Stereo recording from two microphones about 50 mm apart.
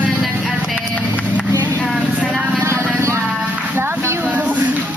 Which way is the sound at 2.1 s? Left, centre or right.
Centre.